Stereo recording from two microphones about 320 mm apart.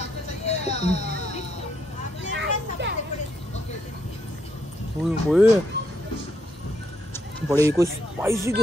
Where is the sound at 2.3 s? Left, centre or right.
Right.